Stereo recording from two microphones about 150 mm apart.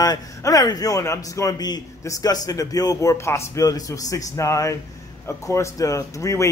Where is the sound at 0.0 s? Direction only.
25° left (ahead or behind).